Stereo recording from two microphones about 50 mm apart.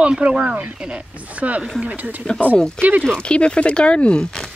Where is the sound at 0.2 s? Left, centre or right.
Centre.